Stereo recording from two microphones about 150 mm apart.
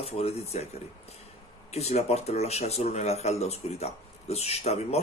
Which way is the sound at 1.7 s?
45° left (ahead or behind).